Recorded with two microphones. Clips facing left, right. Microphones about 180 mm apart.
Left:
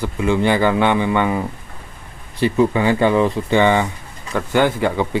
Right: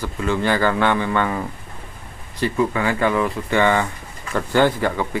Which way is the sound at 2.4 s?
20° left (ahead or behind).